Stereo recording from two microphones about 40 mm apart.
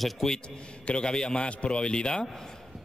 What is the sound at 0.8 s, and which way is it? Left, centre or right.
A man's voice, left.